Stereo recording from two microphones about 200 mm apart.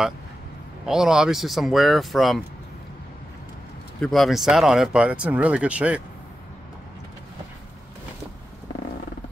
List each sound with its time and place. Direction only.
0.8 s speech: centre (ahead or behind)
4.0 s speech: centre (ahead or behind)